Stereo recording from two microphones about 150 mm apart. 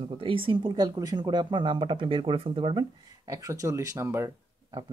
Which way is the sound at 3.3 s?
20° right (ahead or behind).